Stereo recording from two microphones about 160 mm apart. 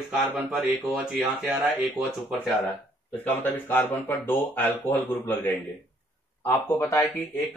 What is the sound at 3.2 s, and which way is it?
A man's voice, 15° left (ahead or behind).